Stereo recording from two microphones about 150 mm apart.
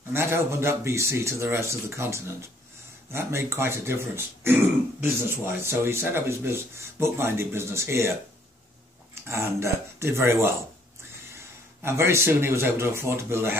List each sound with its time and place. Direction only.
0.1 s speech: 15° right (ahead or behind)
9.3 s speech: 20° right (ahead or behind)